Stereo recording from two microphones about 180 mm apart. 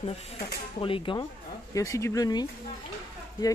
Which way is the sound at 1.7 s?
15° left (ahead or behind).